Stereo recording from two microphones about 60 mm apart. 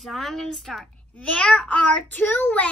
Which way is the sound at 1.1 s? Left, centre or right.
Left.